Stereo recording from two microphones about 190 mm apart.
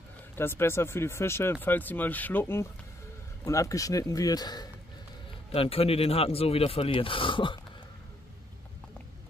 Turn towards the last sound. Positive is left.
turn(degrees=25)  # may be behind; listen again after turning